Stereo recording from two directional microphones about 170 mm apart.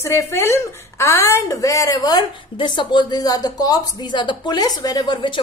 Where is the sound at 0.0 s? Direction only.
15° left (ahead or behind).